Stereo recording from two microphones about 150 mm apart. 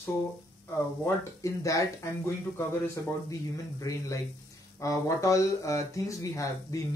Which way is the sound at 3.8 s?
20° left (ahead or behind).